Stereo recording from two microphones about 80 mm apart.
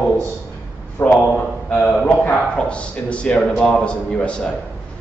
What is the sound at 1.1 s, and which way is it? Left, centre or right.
A man's voice, centre.